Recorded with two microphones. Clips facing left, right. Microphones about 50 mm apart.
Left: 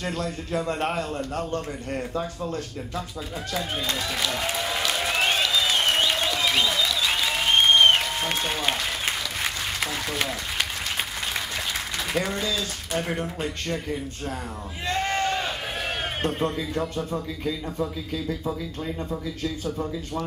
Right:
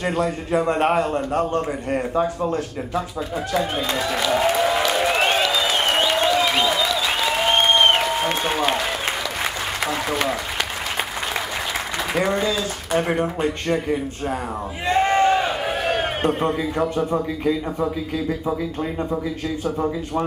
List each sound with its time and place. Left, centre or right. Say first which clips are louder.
0.0 s a man's voice: right 7 dB; right
3.5 s applause: right 6 dB; centre
12.1 s a man's voice: right 6 dB; centre
14.9 s a sound: right 8 dB; right
17.1 s a man's voice: right 8 dB; right